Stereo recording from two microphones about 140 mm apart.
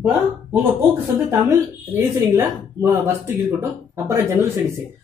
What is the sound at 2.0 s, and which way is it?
Speech, 15° right (ahead or behind).